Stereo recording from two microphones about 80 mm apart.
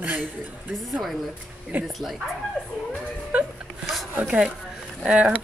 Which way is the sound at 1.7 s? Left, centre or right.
Right.